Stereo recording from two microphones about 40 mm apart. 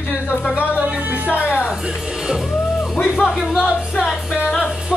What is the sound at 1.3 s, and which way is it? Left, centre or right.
Music, left.